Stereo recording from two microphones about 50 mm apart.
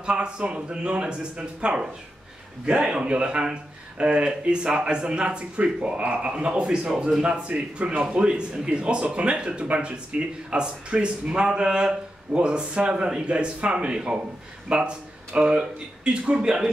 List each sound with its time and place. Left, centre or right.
0.0 s speech: right